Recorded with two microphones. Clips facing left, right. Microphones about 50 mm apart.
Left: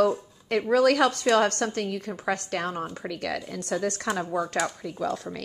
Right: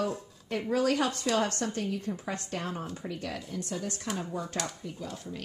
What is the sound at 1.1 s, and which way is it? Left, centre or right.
Speech, left.